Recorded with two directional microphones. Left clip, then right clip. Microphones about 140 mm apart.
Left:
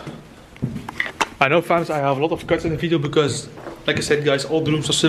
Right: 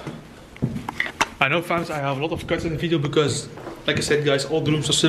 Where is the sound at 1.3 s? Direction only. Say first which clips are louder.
Left 6 dB; 25° left (ahead or behind).